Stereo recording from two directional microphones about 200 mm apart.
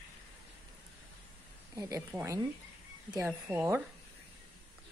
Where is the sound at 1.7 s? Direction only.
15° right (ahead or behind).